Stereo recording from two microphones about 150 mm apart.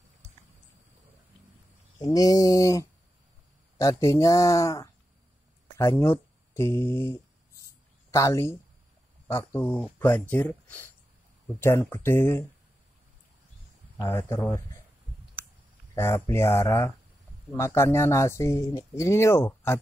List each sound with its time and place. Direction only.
2.0 s speech: 25° left (ahead or behind)
14.0 s speech: 15° left (ahead or behind)
15.4 s clicking: 15° right (ahead or behind)
15.9 s speech: 15° left (ahead or behind)